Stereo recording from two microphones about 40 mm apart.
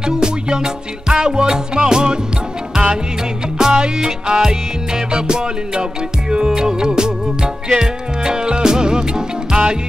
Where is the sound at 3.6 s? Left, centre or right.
Right.